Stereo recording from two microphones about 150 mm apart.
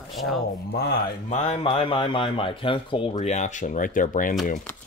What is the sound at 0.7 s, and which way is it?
Speech, 90° left.